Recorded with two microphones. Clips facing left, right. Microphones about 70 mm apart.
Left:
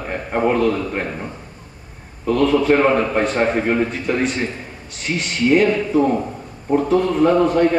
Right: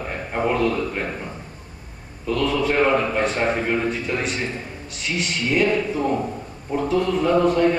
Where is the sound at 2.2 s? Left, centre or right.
Left.